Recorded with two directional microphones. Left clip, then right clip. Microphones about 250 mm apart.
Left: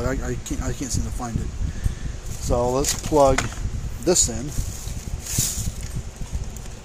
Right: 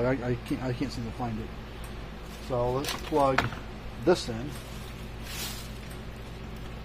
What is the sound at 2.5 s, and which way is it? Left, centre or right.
Speech, left.